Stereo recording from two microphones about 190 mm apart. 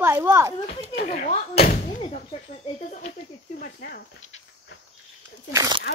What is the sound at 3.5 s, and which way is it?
Speech, 50° left (ahead or behind).